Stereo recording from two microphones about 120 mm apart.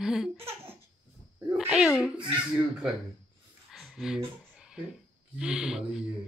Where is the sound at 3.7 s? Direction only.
Centre (ahead or behind).